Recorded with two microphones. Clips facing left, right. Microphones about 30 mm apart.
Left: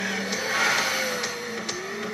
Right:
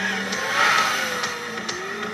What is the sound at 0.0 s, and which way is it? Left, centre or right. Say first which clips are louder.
Music: right 3 dB; right.